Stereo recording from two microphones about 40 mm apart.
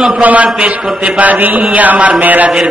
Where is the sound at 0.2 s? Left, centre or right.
Right.